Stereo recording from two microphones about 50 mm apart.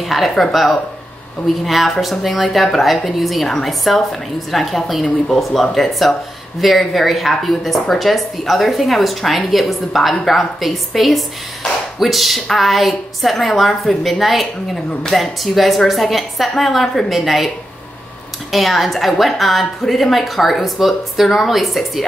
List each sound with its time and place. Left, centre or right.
0.0 s speech: centre
18.5 s speech: centre